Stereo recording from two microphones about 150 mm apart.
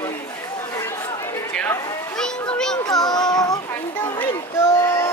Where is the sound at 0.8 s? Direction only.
15° left (ahead or behind).